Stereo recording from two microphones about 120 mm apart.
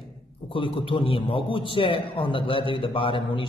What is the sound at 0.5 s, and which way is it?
A man's voice, 45° left (ahead or behind).